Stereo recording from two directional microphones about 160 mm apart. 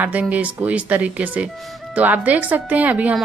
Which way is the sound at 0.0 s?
10° right (ahead or behind).